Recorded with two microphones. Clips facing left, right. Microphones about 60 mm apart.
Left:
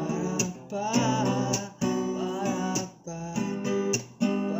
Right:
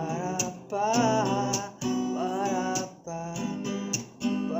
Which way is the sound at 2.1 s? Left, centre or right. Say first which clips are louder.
Right 1 dB; right.